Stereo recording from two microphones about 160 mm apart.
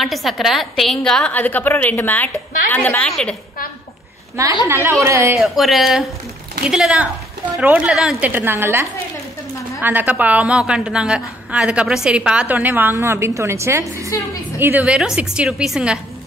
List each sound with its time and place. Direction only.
0.0 s a woman's voice: centre (ahead or behind)
4.6 s a woman's voice: 15° right (ahead or behind)
5.4 s a woman's voice: centre (ahead or behind)